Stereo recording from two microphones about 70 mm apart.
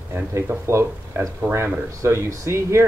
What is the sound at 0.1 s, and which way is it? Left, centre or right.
Speech, right.